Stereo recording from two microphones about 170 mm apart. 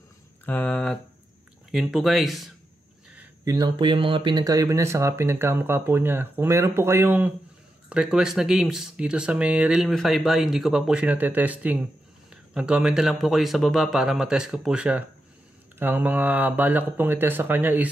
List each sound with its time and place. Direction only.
0.5 s a sound: 10° left (ahead or behind)
1.7 s speech: centre (ahead or behind)
3.4 s speech: 25° right (ahead or behind)